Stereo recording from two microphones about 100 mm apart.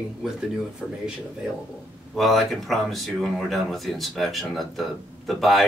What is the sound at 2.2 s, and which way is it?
Speech, centre (ahead or behind).